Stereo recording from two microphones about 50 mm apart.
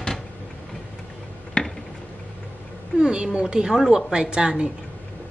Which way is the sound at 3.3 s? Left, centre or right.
Centre.